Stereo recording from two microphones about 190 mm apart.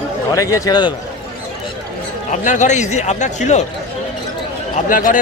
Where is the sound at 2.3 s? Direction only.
40° left (ahead or behind).